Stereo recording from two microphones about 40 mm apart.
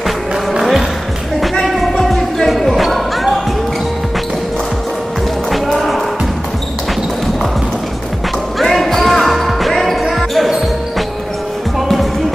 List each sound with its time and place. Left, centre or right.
0.0 s music: centre
1.7 s basketball bounce: centre
8.5 s basketball bounce: centre